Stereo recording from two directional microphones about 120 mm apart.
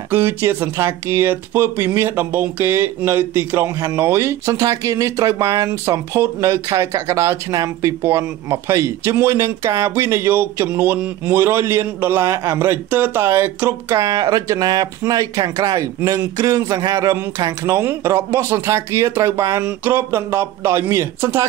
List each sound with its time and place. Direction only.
0.1 s speech: 20° right (ahead or behind)